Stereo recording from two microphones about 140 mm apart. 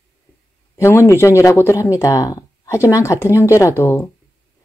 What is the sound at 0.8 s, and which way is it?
Speech, 20° left (ahead or behind).